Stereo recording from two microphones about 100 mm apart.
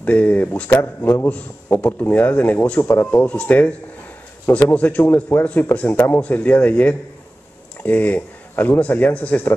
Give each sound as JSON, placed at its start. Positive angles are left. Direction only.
{"t": 0.0, "sound": "a man's voice", "side_deg": 15}